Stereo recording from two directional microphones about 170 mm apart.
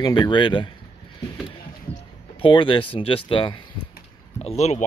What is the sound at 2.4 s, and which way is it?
Speech, 30° left (ahead or behind).